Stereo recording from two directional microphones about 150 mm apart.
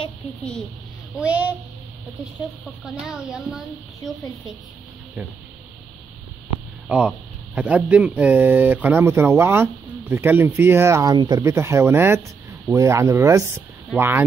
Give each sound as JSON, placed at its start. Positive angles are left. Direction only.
{"t": 1.1, "sound": "speech", "side_deg": -10}
{"t": 2.8, "sound": "a child's voice", "side_deg": -5}
{"t": 6.9, "sound": "speech", "side_deg": -5}